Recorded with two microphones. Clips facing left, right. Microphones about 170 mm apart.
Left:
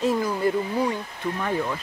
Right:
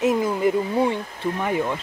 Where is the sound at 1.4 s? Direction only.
15° right (ahead or behind).